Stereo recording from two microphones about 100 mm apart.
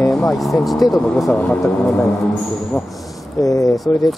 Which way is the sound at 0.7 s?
Centre (ahead or behind).